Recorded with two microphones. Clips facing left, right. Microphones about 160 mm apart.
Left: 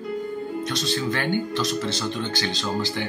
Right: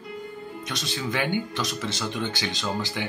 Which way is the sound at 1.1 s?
10° right (ahead or behind).